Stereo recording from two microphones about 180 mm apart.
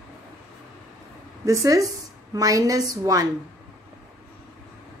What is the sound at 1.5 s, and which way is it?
A woman's voice, 20° right (ahead or behind).